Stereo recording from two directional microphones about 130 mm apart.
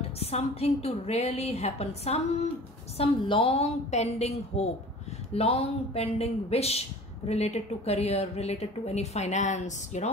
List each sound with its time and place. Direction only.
0.2 s a woman's voice: 55° left (ahead or behind)
3.0 s a woman's voice: 45° left (ahead or behind); by 10.0 s 65° left (ahead or behind)